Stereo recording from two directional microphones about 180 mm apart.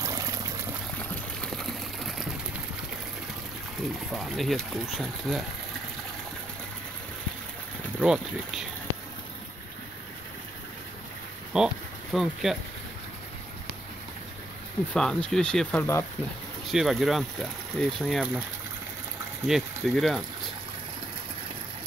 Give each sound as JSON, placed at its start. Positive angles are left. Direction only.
{"t": 0.0, "sound": "a sound", "side_deg": -20}
{"t": 1.4, "sound": "a sound", "side_deg": 0}
{"t": 4.1, "sound": "speech", "side_deg": 0}
{"t": 8.0, "sound": "speech", "side_deg": -5}
{"t": 11.5, "sound": "speech", "side_deg": -5}
{"t": 15.0, "sound": "speech", "side_deg": 5}
{"t": 16.7, "sound": "speech", "side_deg": 0}
{"t": 19.4, "sound": "speech", "side_deg": 0}